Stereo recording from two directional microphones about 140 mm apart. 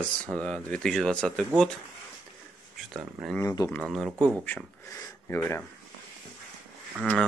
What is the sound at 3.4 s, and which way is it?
Speech, 20° left (ahead or behind).